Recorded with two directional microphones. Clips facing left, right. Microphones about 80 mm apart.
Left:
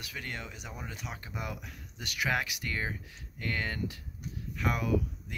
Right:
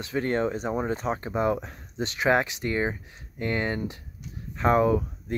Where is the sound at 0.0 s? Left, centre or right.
Right.